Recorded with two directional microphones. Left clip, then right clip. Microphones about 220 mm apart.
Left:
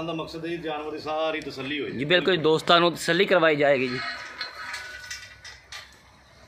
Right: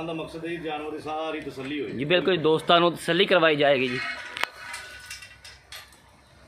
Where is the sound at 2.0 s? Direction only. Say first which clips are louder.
Left 1 dB; centre (ahead or behind).